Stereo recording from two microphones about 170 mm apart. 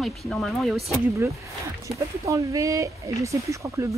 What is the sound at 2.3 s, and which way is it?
Speech, 20° right (ahead or behind).